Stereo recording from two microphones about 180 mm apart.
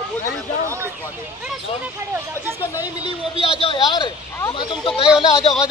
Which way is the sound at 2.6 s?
15° left (ahead or behind).